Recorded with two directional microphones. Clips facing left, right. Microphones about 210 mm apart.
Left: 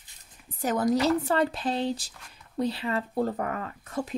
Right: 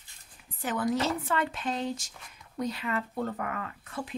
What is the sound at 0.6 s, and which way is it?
Speech, 40° left (ahead or behind).